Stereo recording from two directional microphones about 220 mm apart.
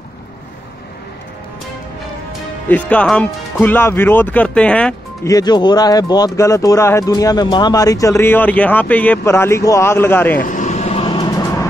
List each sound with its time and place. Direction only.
2.7 s speech: 5° left (ahead or behind)
10.4 s vehicle: 35° left (ahead or behind); by 11.6 s 15° left (ahead or behind)